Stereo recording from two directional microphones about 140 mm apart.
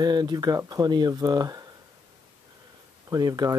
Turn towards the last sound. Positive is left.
turn(degrees=-25)  # may be behind; listen again after turning